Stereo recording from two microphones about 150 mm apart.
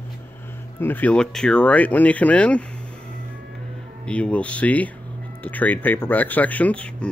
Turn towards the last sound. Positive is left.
turn(degrees=10)  # may be behind; listen again after turning